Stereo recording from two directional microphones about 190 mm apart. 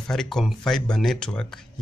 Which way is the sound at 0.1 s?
Centre (ahead or behind).